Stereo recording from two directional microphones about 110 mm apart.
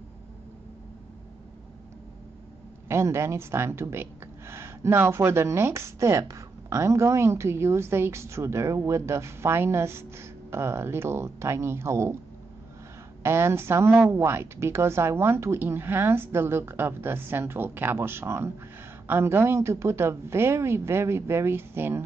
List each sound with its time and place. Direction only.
2.9 s speech: 25° right (ahead or behind)
13.2 s speech: 25° right (ahead or behind)